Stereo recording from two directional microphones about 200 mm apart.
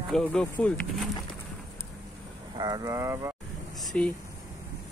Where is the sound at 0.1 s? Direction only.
5° left (ahead or behind).